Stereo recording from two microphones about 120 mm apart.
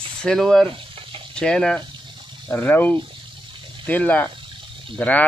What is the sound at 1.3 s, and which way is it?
Speech, 10° left (ahead or behind).